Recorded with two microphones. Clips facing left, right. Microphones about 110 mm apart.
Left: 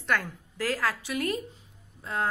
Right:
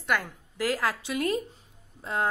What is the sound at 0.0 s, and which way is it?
A woman's voice, 15° right (ahead or behind).